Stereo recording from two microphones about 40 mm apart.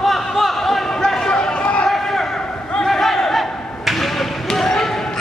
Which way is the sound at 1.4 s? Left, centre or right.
Left.